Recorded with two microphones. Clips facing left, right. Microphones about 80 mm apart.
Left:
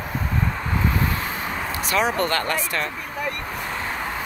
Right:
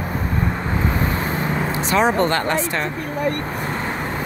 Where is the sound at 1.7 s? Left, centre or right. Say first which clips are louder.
Right 4 dB; right.